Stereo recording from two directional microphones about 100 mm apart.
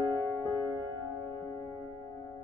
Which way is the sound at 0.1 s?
25° left (ahead or behind).